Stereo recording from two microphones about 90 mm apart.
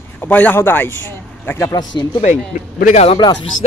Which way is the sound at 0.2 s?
20° left (ahead or behind).